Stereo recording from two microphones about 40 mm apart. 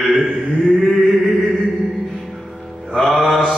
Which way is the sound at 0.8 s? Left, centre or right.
Centre.